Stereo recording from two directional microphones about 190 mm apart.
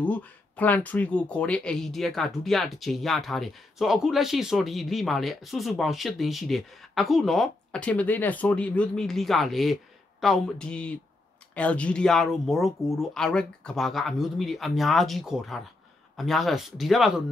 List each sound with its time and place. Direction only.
0.0 s speech: 10° left (ahead or behind)